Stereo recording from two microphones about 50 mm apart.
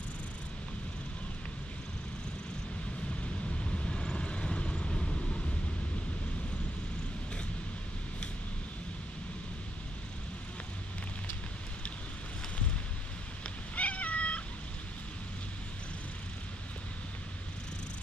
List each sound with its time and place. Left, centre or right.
3.7 s vehicle: centre
13.7 s cat: left